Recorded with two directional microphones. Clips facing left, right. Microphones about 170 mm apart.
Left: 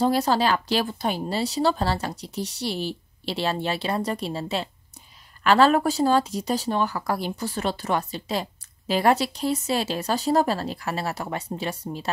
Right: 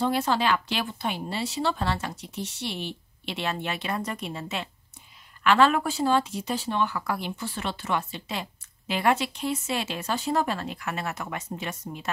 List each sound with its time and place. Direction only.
0.0 s speech: 40° left (ahead or behind)